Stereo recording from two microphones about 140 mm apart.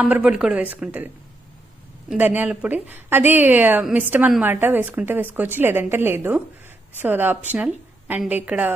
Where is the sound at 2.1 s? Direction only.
10° right (ahead or behind).